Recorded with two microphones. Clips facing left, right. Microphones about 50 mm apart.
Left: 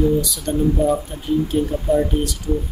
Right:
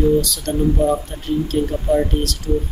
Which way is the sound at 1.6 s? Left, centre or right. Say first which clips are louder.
Even; centre.